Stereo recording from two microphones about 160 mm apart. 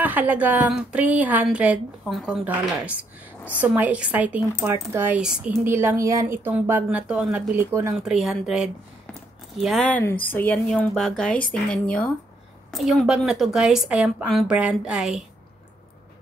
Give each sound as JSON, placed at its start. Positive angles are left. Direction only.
{"t": 0.0, "sound": "speech", "side_deg": -10}
{"t": 8.0, "sound": "a woman's voice", "side_deg": 0}